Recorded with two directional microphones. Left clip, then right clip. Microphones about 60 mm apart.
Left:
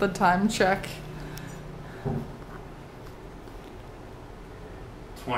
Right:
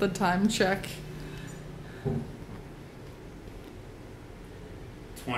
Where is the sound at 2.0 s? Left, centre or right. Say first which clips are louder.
Left 1 dB; left.